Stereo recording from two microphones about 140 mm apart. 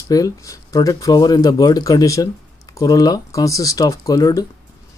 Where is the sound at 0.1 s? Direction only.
25° left (ahead or behind).